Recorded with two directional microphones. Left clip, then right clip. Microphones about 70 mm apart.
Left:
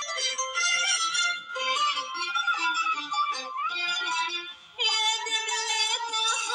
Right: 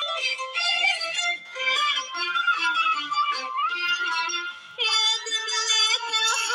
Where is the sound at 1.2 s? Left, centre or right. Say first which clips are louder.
Right 3 dB; right.